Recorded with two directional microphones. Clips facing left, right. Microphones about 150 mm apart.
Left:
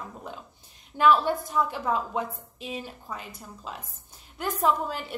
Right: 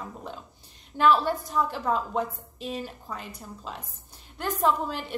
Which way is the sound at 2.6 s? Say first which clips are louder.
Right 3 dB; 40° right (ahead or behind).